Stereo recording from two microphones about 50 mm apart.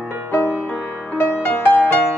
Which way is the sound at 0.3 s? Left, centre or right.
Left.